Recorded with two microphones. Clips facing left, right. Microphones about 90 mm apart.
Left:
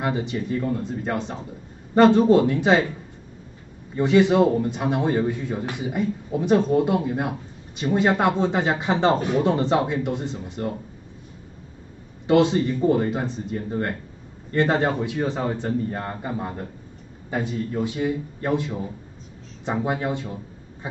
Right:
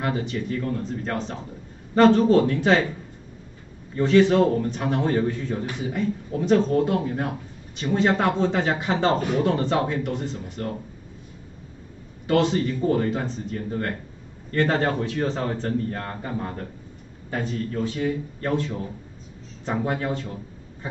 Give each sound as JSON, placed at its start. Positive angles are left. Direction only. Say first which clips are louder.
{"t": 0.0, "sound": "a man's voice", "louder": "left 1 dB", "side_deg": 20}
{"t": 3.9, "sound": "a man's voice", "louder": "even", "side_deg": 15}
{"t": 12.3, "sound": "a man's voice", "louder": "left 3 dB", "side_deg": 15}